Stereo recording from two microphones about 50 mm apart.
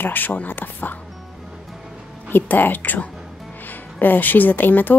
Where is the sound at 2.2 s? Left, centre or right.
Left.